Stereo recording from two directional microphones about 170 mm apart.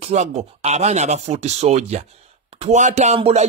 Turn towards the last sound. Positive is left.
turn(degrees=-40)  # may be behind; listen again after turning